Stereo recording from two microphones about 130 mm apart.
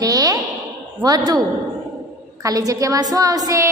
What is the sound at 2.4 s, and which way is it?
A woman's voice, 25° right (ahead or behind).